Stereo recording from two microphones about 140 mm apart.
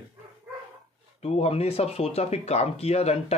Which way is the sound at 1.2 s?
50° left (ahead or behind).